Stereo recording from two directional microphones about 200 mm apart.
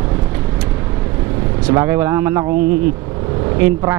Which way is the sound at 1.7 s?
15° right (ahead or behind).